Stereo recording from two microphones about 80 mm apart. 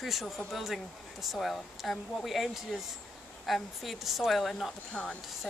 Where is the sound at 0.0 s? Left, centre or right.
Centre.